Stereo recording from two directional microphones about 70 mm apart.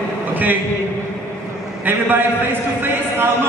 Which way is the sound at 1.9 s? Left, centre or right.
Right.